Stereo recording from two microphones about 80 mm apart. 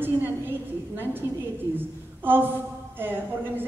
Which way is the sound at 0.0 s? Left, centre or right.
Right.